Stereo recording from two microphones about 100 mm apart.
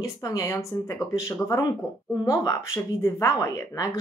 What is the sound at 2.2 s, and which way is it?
Speech, 30° left (ahead or behind).